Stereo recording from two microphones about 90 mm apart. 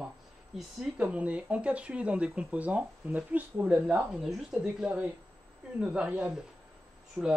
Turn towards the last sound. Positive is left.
turn(degrees=-25)  # may be behind; listen again after turning